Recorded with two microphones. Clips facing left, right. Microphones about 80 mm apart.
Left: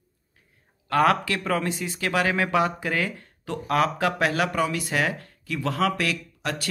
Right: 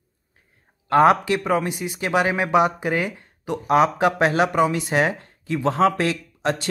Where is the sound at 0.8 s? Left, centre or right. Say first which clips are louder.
Right 5 dB; right.